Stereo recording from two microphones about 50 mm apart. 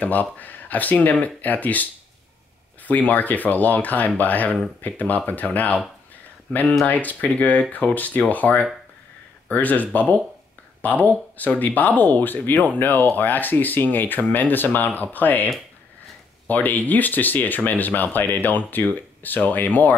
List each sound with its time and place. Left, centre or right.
0.0 s speech: left
6.9 s speech: left